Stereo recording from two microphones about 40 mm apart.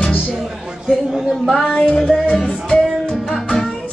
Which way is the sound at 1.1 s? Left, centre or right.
Centre.